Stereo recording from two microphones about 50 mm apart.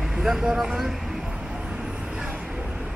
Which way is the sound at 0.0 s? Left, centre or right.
Centre.